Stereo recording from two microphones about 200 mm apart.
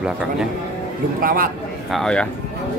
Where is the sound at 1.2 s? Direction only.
45° right (ahead or behind).